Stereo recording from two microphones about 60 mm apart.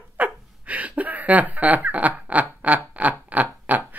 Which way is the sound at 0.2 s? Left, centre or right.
Right.